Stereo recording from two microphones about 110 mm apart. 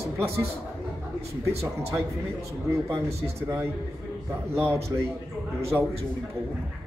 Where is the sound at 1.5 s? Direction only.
25° right (ahead or behind).